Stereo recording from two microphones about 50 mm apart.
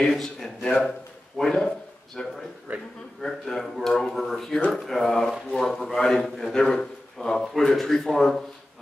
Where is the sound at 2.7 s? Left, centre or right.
Right.